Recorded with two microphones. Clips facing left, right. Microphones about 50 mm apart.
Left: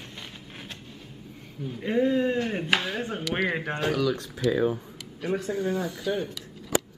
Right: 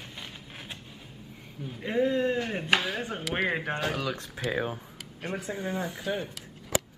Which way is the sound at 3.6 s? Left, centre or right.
Centre.